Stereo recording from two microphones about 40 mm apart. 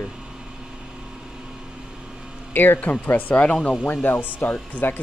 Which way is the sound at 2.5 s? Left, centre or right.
Left.